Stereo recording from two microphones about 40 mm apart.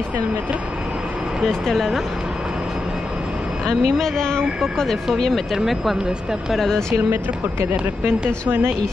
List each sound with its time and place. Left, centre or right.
1.4 s speech: centre
3.6 s speech: centre
5.1 s speech: centre
5.6 s speech: centre
6.5 s speech: centre
8.5 s speech: right